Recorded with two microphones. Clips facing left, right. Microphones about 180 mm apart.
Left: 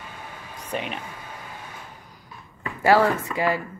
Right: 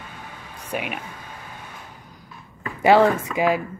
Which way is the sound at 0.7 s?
10° right (ahead or behind).